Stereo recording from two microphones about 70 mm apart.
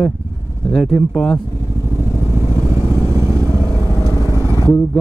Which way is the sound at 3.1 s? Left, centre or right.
Left.